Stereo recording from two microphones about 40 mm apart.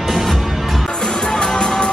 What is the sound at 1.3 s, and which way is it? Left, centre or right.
Music, left.